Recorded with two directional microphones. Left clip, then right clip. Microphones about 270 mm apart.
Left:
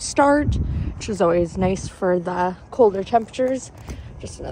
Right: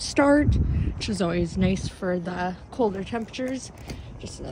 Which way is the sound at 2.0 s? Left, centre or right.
Left.